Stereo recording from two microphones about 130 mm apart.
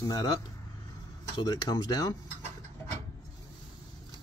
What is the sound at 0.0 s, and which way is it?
Speech, 30° left (ahead or behind).